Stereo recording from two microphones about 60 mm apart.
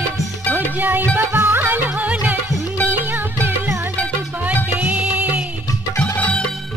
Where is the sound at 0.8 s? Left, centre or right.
Right.